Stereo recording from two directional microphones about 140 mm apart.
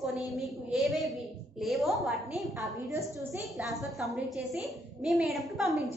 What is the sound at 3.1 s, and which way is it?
Speech, 15° right (ahead or behind).